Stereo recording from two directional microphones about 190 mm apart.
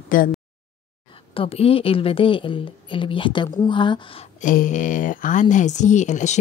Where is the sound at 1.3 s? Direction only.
30° left (ahead or behind).